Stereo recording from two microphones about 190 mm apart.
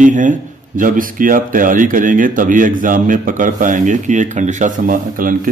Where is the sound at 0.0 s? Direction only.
40° right (ahead or behind).